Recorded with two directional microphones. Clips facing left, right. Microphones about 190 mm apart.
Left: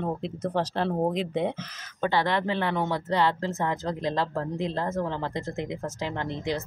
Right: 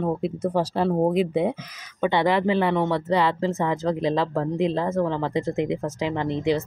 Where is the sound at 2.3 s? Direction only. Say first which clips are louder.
Right 6 dB; 5° right (ahead or behind).